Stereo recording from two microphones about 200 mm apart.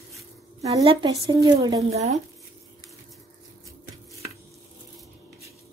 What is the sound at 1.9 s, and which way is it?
Speech, 35° right (ahead or behind).